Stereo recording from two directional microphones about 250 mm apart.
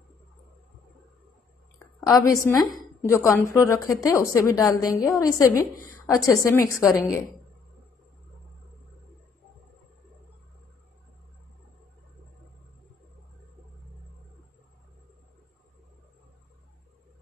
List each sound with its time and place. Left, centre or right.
2.0 s a woman's voice: centre